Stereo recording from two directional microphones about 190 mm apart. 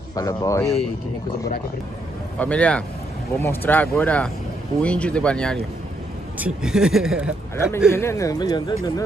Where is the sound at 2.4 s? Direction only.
5° left (ahead or behind).